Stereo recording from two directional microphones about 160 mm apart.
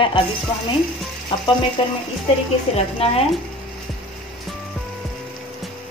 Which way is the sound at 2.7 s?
40° left (ahead or behind).